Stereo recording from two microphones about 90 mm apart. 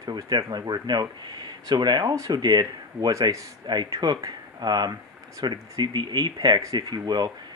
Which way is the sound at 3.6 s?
55° right (ahead or behind).